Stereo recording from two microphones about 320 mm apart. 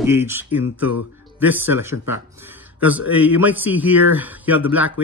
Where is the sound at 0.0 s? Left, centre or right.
Centre.